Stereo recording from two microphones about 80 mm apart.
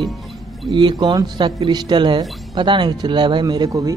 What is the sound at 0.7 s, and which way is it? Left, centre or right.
Speech, right.